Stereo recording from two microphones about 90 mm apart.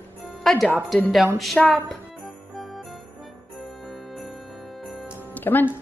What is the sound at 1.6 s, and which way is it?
Speech, 15° left (ahead or behind).